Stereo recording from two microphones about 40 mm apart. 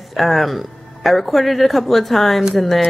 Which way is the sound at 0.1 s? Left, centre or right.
Centre.